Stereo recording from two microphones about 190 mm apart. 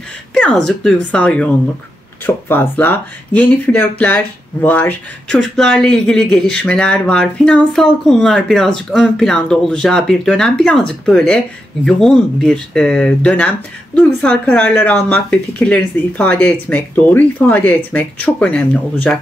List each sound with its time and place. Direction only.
0.3 s speech: 5° left (ahead or behind)